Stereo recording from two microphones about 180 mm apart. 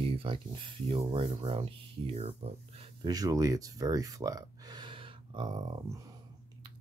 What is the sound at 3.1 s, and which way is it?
Speech, 20° right (ahead or behind).